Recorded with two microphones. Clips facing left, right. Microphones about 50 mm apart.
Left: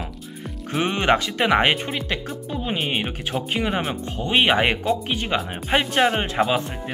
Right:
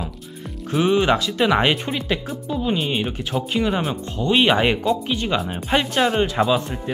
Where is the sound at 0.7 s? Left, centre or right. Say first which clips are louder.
Right 3 dB; left.